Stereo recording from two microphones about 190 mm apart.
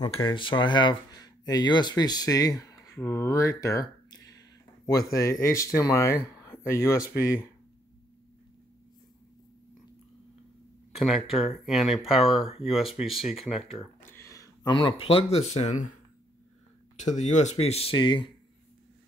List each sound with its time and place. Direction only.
0.0 s speech: 25° left (ahead or behind)
2.7 s a sound: 15° left (ahead or behind)
5.1 s speech: 15° left (ahead or behind)
11.0 s speech: centre (ahead or behind)
14.0 s speech: 15° left (ahead or behind); by 15.9 s 35° left (ahead or behind)
16.9 s speech: 40° left (ahead or behind)